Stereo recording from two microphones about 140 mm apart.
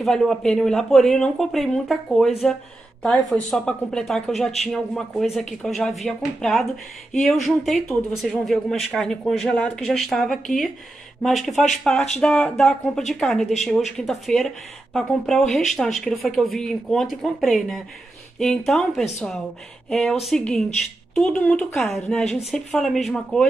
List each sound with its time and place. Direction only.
0.0 s a woman's voice: centre (ahead or behind)
11.5 s speech: 60° left (ahead or behind)
11.8 s speech: centre (ahead or behind)